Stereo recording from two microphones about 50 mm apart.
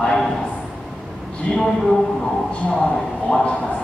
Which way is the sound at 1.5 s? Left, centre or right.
Centre.